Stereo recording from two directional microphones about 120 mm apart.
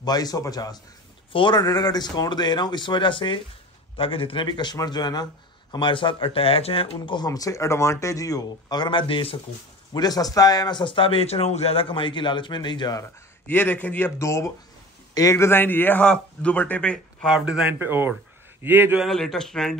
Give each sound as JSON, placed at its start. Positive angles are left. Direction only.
{"t": 0.0, "sound": "speech", "side_deg": 35}
{"t": 7.2, "sound": "speech", "side_deg": 30}
{"t": 9.9, "sound": "speech", "side_deg": 30}
{"t": 13.5, "sound": "a man's voice", "side_deg": 15}
{"t": 17.3, "sound": "a man's voice", "side_deg": -5}
{"t": 17.7, "sound": "a man's voice", "side_deg": -20}
{"t": 19.0, "sound": "speech", "side_deg": 5}